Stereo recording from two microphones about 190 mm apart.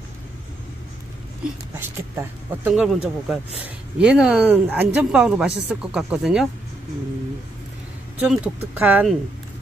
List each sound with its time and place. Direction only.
1.8 s speech: 10° right (ahead or behind)
8.2 s speech: 10° right (ahead or behind)